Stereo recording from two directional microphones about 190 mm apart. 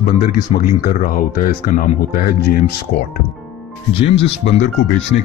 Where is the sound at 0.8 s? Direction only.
45° left (ahead or behind).